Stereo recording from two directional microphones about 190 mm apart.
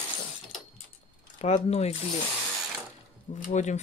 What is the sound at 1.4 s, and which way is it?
Speech, 35° left (ahead or behind).